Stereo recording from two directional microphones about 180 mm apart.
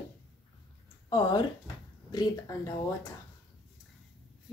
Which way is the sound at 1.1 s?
25° left (ahead or behind).